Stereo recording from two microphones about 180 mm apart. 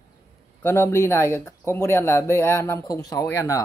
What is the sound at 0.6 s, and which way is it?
Speech, 15° left (ahead or behind).